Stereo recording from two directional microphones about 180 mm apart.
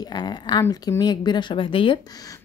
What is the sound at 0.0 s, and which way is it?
A woman's voice, 25° left (ahead or behind).